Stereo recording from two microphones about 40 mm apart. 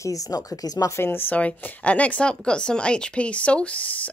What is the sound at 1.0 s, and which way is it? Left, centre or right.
Speech, left.